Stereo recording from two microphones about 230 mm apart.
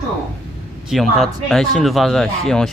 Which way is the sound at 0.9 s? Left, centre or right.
Centre.